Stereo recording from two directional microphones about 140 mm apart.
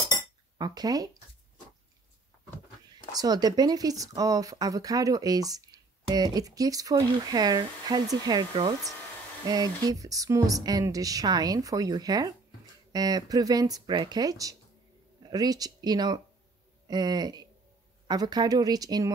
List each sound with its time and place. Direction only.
0.6 s speech: 30° right (ahead or behind)
3.1 s speech: 25° right (ahead or behind)